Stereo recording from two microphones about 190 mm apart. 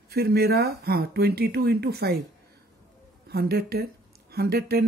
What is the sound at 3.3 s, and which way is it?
Speech, 55° right (ahead or behind).